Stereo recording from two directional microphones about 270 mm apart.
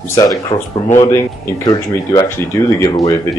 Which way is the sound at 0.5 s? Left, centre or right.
Left.